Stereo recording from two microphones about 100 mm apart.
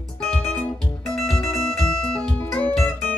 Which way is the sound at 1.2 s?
5° left (ahead or behind).